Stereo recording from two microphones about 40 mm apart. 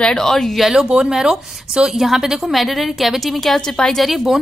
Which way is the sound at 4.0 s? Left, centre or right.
Centre.